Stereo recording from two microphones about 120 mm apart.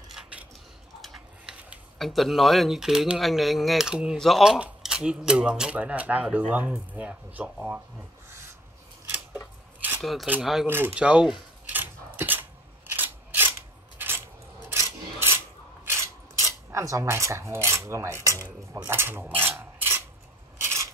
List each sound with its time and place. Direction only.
0.1 s cutlery: 10° right (ahead or behind)
1.0 s tick-tock: 5° right (ahead or behind)
2.0 s speech: centre (ahead or behind)
10.0 s speech: centre (ahead or behind)
10.7 s a sound: 15° right (ahead or behind)
14.7 s filing: 25° right (ahead or behind)
15.8 s cutlery: 20° right (ahead or behind)
20.6 s filing: 25° right (ahead or behind)